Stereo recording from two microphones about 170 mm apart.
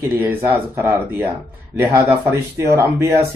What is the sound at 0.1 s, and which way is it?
Speech, 10° right (ahead or behind).